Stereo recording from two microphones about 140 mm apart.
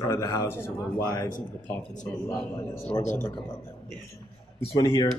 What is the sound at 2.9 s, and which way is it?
Speech, 15° left (ahead or behind).